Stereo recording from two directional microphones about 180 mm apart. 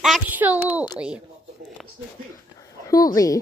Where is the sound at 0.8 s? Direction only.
5° right (ahead or behind).